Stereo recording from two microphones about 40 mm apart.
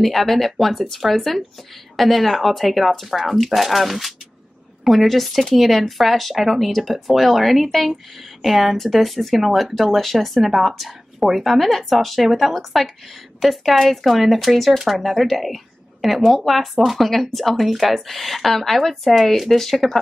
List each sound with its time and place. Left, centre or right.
0.0 s speech: centre